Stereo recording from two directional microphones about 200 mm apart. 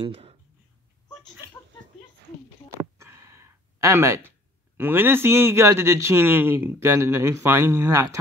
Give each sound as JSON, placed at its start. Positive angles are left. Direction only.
{"t": 0.0, "sound": "speech", "side_deg": -30}
{"t": 2.8, "sound": "a sound", "side_deg": -15}
{"t": 4.7, "sound": "a man's voice", "side_deg": -10}